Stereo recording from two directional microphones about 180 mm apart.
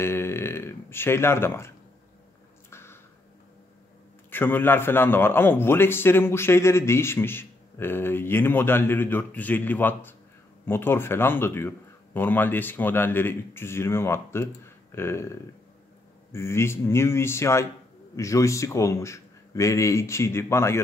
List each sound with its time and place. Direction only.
0.0 s speech: 15° left (ahead or behind)
2.7 s a sound: 15° left (ahead or behind)
4.3 s a man's voice: 10° left (ahead or behind)